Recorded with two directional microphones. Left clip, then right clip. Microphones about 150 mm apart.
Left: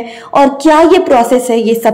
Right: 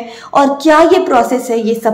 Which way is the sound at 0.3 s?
15° left (ahead or behind).